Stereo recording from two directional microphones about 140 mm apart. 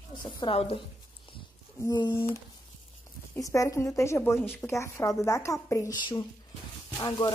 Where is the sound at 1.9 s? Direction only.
30° left (ahead or behind).